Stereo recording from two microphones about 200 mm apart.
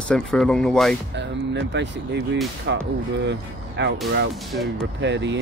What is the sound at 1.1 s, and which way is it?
Speech, 60° right (ahead or behind).